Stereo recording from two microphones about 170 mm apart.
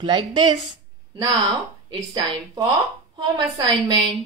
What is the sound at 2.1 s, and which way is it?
A woman's voice, 25° right (ahead or behind).